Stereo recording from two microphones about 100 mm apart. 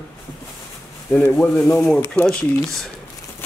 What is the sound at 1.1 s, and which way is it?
Speech, 20° left (ahead or behind).